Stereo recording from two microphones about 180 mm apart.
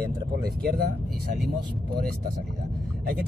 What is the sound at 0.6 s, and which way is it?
Speech, 60° right (ahead or behind).